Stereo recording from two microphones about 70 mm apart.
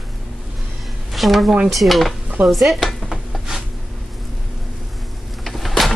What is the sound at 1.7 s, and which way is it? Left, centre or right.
Dishes, centre.